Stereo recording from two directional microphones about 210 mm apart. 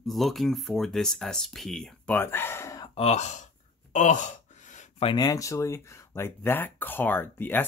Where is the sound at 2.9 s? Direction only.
30° left (ahead or behind).